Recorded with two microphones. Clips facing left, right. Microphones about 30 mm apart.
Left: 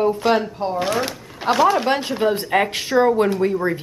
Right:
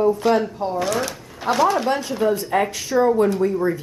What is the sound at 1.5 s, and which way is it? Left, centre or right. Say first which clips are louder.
Speech: left 2 dB; centre.